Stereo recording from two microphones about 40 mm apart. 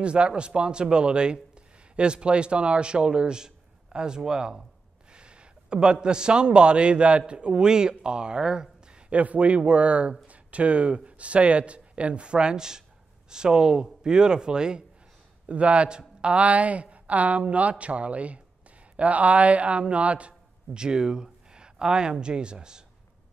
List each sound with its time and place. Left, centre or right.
0.0 s a man's voice: right
9.1 s a man's voice: right
15.4 s a man's voice: right